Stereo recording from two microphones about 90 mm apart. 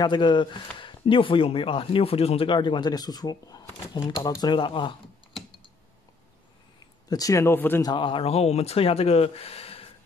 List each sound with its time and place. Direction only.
0.0 s speech: 60° left (ahead or behind)
7.1 s speech: 40° left (ahead or behind)
7.4 s speech: 25° left (ahead or behind)
7.8 s speech: 65° left (ahead or behind)
8.7 s speech: 90° left